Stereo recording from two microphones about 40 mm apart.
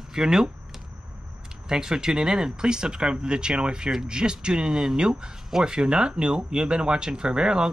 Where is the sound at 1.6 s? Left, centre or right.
Centre.